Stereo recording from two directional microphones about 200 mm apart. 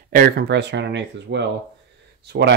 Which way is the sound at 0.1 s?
50° right (ahead or behind).